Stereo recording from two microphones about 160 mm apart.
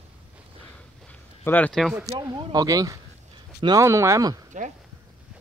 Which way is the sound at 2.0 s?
20° right (ahead or behind).